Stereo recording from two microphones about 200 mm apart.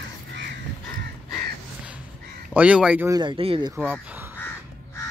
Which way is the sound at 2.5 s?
5° right (ahead or behind).